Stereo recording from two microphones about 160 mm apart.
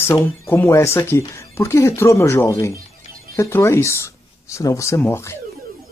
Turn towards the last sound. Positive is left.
turn(degrees=15)  # may be behind; listen again after turning